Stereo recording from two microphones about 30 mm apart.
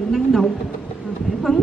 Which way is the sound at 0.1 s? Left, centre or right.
Centre.